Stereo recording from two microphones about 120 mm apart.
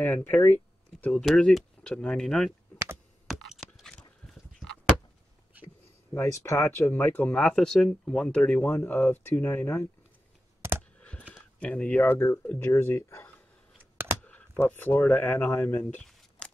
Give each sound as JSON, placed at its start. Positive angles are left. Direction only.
{"t": 0.0, "sound": "speech", "side_deg": 15}
{"t": 1.2, "sound": "speech", "side_deg": 0}
{"t": 3.3, "sound": "a sound", "side_deg": 0}
{"t": 6.1, "sound": "speech", "side_deg": 20}
{"t": 7.3, "sound": "speech", "side_deg": 5}
{"t": 10.6, "sound": "clicking", "side_deg": -25}
{"t": 11.0, "sound": "a sound", "side_deg": 10}
{"t": 11.6, "sound": "speech", "side_deg": 10}
{"t": 14.0, "sound": "computer keyboard", "side_deg": -20}
{"t": 14.7, "sound": "speech", "side_deg": 15}
{"t": 16.0, "sound": "a sound", "side_deg": 5}